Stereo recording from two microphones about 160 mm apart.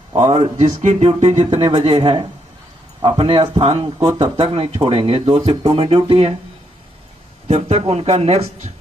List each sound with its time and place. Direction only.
0.2 s speech: 40° right (ahead or behind)
7.4 s speech: 45° right (ahead or behind)